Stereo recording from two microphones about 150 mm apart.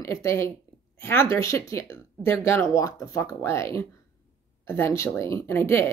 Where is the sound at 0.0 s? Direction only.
20° left (ahead or behind).